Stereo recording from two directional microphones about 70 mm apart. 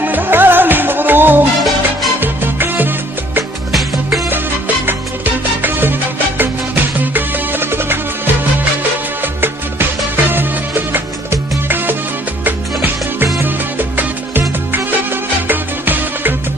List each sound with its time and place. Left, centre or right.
0.0 s music: right
4.8 s music: right
9.2 s music: right
15.4 s music: right